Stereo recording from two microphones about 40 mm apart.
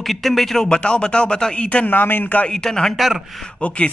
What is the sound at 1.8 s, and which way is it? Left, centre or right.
Speech, left.